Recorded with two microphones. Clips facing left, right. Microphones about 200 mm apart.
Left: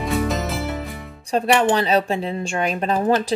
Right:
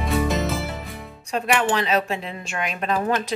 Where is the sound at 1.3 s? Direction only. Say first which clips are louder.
Left 4 dB; 35° left (ahead or behind).